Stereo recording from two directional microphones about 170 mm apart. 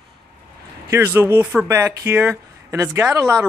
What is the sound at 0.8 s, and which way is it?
Speech, 15° right (ahead or behind).